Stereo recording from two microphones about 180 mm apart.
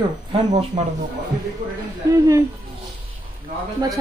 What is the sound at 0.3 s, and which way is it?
Speech, 35° right (ahead or behind).